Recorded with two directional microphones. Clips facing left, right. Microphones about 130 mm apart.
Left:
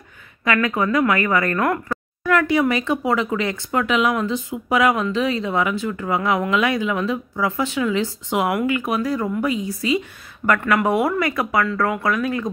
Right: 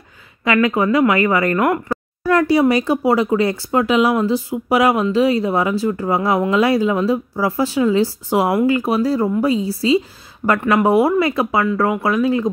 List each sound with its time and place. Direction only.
0.5 s speech: 25° right (ahead or behind)